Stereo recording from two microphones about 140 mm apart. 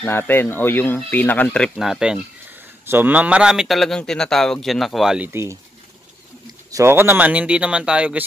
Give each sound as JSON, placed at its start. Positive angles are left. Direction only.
{"t": 0.0, "sound": "a man's voice", "side_deg": 15}
{"t": 5.3, "sound": "speech", "side_deg": -20}
{"t": 6.7, "sound": "speech", "side_deg": -20}